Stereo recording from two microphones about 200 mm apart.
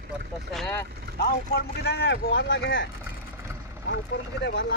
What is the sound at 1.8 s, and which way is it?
Speech, 60° left (ahead or behind).